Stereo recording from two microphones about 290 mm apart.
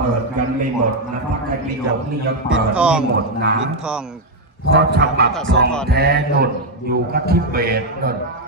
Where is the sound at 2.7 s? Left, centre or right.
Centre.